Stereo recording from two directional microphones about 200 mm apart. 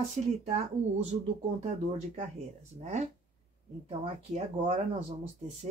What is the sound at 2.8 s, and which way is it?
Speech, 35° right (ahead or behind).